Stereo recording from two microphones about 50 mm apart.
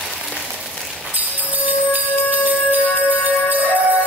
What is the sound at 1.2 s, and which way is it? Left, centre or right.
Music, right.